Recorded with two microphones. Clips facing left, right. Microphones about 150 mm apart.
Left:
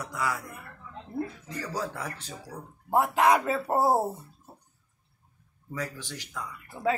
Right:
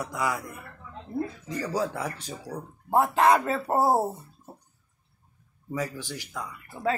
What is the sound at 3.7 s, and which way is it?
Speech, 10° right (ahead or behind).